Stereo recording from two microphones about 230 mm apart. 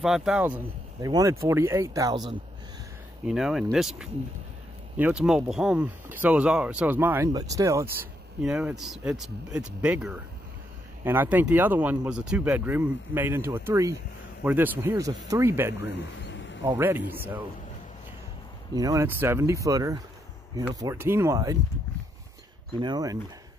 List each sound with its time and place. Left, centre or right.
0.0 s speech: centre
3.3 s speech: centre
15.9 s a sound: left
16.6 s speech: centre
18.8 s speech: centre
22.8 s speech: centre